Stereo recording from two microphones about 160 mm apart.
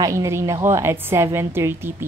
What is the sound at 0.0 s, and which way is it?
A woman's voice, 20° right (ahead or behind).